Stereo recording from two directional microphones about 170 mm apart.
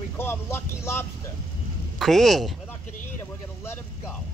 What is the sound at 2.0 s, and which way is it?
Speech, centre (ahead or behind).